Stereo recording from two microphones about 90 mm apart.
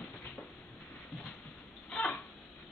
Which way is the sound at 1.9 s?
10° left (ahead or behind).